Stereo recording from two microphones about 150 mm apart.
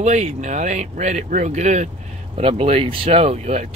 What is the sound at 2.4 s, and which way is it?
Speech, 40° right (ahead or behind).